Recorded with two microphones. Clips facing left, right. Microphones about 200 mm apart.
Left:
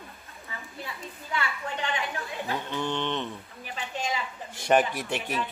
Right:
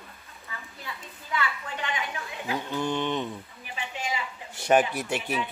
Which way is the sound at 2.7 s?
10° right (ahead or behind).